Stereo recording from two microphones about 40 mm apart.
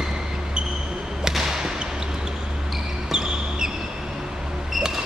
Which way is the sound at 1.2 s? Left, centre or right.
Centre.